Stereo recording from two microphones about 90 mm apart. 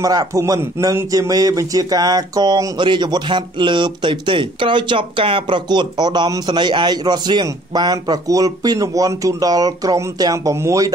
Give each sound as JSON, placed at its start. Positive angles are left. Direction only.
{"t": 0.0, "sound": "a man's voice", "side_deg": -40}
{"t": 5.7, "sound": "speech", "side_deg": -50}